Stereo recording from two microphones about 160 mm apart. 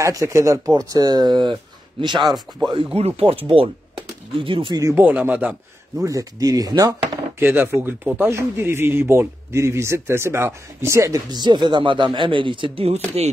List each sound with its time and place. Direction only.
0.0 s speech: 20° right (ahead or behind)
2.1 s speech: centre (ahead or behind)
2.7 s speech: 40° right (ahead or behind)
4.8 s speech: 10° right (ahead or behind)
6.0 s speech: 20° right (ahead or behind)
7.4 s speech: 10° right (ahead or behind); by 13.3 s 40° right (ahead or behind)